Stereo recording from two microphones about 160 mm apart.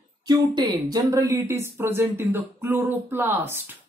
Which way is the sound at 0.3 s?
25° right (ahead or behind).